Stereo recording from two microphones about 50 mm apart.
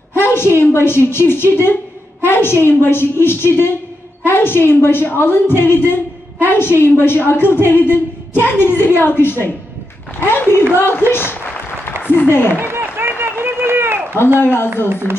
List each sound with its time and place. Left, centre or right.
0.2 s a sound: left
0.6 s a woman's voice: left
12.5 s run: right
14.4 s a woman's voice: left